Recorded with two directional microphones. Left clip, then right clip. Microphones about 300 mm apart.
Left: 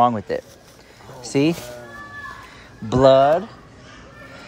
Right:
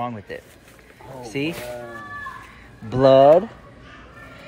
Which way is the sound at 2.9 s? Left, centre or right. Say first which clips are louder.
Right 1 dB; centre.